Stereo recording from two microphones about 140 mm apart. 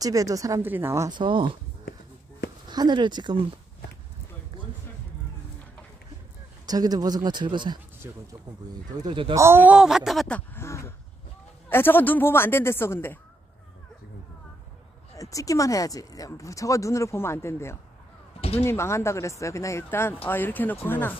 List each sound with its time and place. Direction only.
0.0 s a woman's voice: 25° right (ahead or behind)
1.1 s speech: 35° right (ahead or behind)
2.7 s speech: 30° right (ahead or behind)
6.6 s speech: 30° right (ahead or behind)
8.0 s speech: 20° right (ahead or behind)
9.0 s speech: 35° right (ahead or behind)
9.3 s speech: 20° right (ahead or behind); by 13.2 s 15° left (ahead or behind)
15.1 s speech: 25° left (ahead or behind)